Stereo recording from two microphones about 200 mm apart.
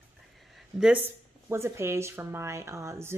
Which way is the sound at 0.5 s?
5° right (ahead or behind).